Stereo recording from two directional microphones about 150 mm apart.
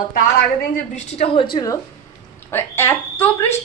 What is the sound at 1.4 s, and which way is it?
Speech, 30° left (ahead or behind).